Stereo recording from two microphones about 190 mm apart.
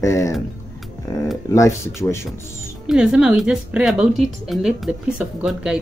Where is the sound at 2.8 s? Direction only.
5° right (ahead or behind).